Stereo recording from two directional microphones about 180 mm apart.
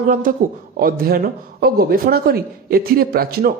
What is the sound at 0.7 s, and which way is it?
Speech, 55° right (ahead or behind).